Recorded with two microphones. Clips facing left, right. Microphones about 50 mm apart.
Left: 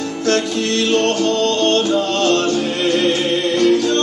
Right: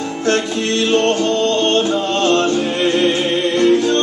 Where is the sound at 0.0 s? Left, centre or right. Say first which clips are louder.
Even; right.